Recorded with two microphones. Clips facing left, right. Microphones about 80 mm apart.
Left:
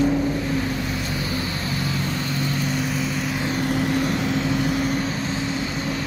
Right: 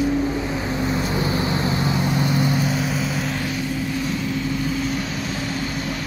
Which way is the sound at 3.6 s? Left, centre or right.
Left.